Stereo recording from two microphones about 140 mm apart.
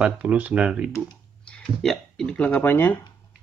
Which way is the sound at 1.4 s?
5° left (ahead or behind).